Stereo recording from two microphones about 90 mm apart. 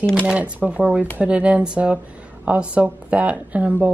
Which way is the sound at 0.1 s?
10° right (ahead or behind).